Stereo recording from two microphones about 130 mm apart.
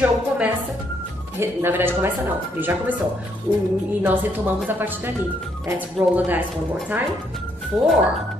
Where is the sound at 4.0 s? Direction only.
15° right (ahead or behind).